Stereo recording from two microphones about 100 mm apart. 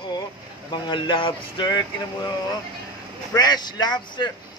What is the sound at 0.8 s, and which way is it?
Speech, 55° left (ahead or behind).